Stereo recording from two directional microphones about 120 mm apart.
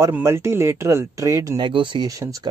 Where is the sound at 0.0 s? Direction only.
20° right (ahead or behind).